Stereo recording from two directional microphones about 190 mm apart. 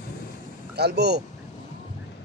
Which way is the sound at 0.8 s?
60° right (ahead or behind).